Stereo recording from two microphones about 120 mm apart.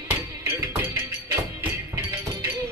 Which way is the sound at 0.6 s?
20° right (ahead or behind).